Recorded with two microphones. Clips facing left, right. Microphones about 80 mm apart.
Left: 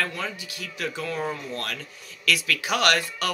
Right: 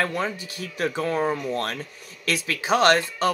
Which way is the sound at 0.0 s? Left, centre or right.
Right.